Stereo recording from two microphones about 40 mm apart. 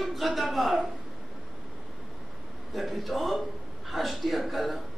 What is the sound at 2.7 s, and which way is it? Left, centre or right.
A man's voice, centre.